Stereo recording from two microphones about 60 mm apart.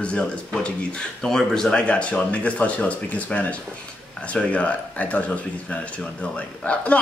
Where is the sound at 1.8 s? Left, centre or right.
Centre.